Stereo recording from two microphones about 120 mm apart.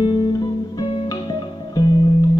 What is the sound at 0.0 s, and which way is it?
Music, 35° left (ahead or behind).